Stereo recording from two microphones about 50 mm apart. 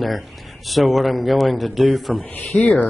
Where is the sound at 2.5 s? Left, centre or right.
Left.